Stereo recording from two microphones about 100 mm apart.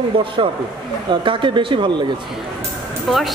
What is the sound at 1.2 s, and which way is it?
Speech, 55° right (ahead or behind).